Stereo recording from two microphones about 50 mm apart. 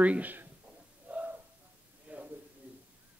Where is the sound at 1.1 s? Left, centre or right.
Right.